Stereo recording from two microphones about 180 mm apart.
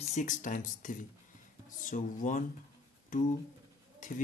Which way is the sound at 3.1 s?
45° left (ahead or behind).